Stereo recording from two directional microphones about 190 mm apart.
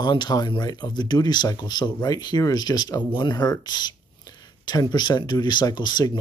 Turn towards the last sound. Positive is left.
turn(degrees=20)  # may be behind; listen again after turning